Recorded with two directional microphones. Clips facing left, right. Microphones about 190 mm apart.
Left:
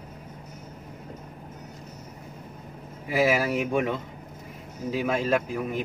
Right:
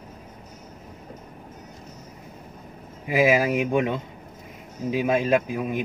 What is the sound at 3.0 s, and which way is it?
A man's voice, 15° right (ahead or behind).